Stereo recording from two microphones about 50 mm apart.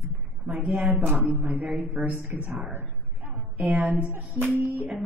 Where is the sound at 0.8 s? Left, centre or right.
Right.